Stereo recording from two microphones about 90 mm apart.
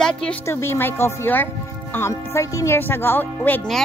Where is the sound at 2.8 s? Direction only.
25° left (ahead or behind).